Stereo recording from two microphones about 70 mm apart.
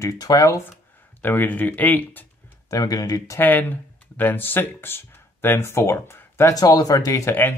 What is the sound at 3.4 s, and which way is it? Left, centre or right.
Speech, left.